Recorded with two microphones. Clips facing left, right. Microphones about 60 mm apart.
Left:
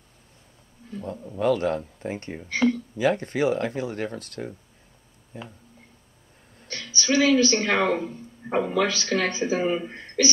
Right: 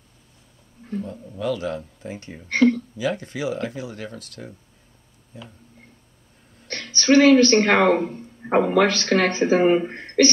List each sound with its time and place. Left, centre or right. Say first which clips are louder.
0.8 s wild animals: right 8 dB; right
1.3 s speech: left 3 dB; left
6.7 s speech: right 7 dB; right